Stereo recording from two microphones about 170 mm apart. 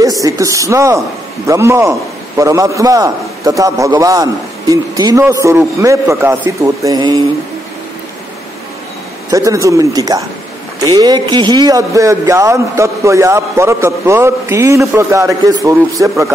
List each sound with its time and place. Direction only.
0.0 s a man's voice: 20° right (ahead or behind)
9.3 s a man's voice: 20° right (ahead or behind)